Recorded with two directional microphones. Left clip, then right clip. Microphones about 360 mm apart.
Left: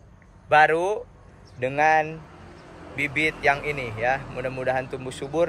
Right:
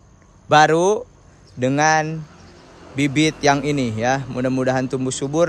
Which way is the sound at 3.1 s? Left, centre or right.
Centre.